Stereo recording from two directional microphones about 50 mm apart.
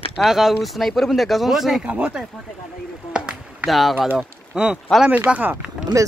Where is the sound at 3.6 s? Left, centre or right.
Centre.